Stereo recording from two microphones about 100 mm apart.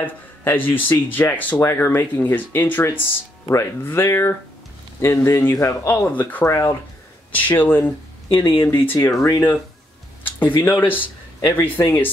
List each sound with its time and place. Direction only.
0.0 s speech: 20° left (ahead or behind)
6.4 s speech: 30° left (ahead or behind)
7.3 s speech: 20° left (ahead or behind)
10.6 s speech: 20° left (ahead or behind)